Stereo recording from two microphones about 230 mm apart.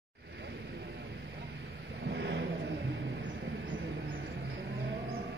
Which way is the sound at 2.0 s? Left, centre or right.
Right.